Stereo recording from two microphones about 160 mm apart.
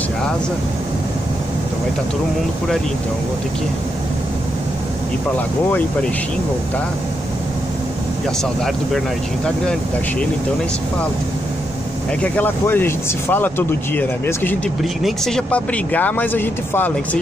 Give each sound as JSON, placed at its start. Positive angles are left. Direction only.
{"t": 12.2, "sound": "speech", "side_deg": 10}
{"t": 14.8, "sound": "speech", "side_deg": 0}